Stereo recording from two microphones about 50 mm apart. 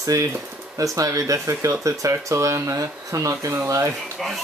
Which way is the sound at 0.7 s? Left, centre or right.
Right.